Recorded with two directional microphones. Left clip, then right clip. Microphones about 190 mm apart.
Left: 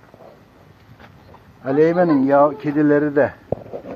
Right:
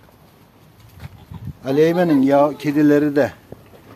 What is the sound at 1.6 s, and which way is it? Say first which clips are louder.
Speech: even; 45° right (ahead or behind).